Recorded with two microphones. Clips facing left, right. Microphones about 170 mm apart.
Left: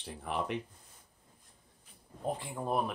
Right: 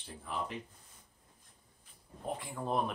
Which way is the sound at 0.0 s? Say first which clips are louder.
Left 4 dB; 70° left (ahead or behind).